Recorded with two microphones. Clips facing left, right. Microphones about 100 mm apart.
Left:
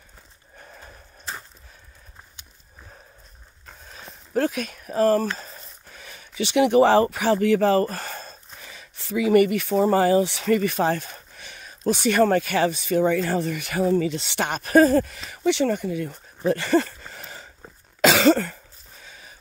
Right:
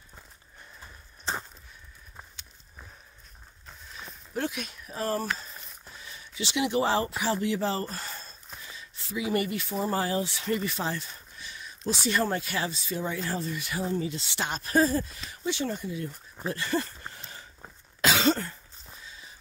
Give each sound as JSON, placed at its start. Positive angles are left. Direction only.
{"t": 4.3, "sound": "speech", "side_deg": 45}
{"t": 18.0, "sound": "cough", "side_deg": 90}